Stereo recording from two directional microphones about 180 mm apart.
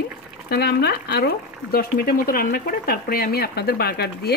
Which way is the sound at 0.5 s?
60° left (ahead or behind).